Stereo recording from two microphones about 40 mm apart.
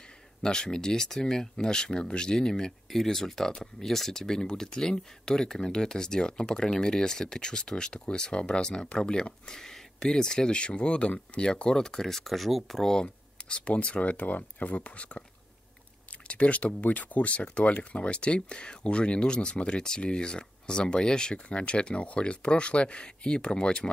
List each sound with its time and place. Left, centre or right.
0.4 s speech: centre
13.0 s speech: left
16.3 s speech: left